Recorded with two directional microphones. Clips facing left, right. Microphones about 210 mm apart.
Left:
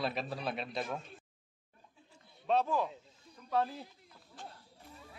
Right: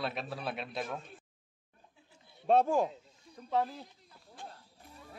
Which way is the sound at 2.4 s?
50° right (ahead or behind).